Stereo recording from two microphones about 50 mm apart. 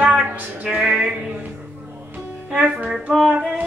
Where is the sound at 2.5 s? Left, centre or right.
Right.